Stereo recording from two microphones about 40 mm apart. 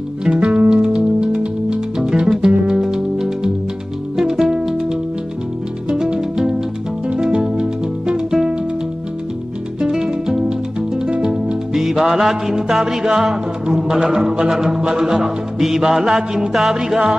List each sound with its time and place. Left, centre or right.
0.4 s music: right
9.8 s music: centre
11.7 s music: centre